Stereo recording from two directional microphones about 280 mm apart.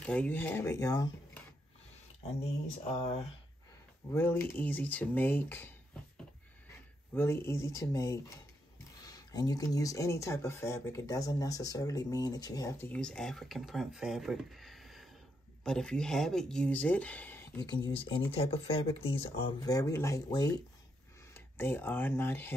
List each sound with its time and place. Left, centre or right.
0.0 s speech: centre
4.1 s speech: centre
7.2 s speech: centre
17.9 s speech: centre